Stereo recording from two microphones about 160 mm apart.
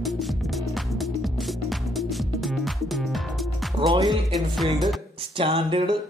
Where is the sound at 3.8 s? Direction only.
30° right (ahead or behind).